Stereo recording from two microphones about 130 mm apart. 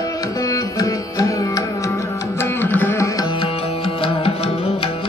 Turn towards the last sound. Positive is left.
turn(degrees=50)  # may be behind; listen again after turning